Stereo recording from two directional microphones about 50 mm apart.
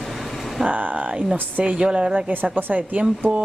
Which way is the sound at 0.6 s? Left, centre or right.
Right.